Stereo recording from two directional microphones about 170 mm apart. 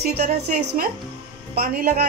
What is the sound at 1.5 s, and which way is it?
Speech, 55° right (ahead or behind).